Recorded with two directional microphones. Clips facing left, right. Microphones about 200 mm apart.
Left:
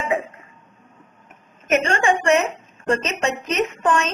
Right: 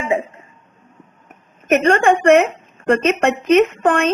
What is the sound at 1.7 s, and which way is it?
A woman's voice, 60° right (ahead or behind).